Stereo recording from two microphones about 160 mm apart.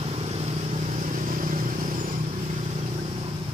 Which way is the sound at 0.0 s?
40° right (ahead or behind).